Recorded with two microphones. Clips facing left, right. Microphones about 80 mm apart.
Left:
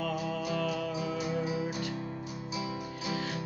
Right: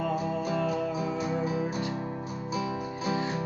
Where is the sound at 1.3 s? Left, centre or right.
Right.